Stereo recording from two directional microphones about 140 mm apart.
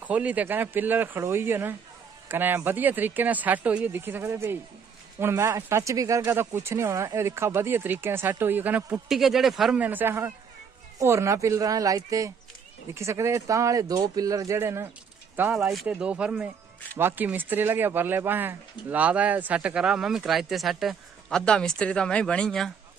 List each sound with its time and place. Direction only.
0.0 s speech: 10° right (ahead or behind)
8.9 s speech: centre (ahead or behind)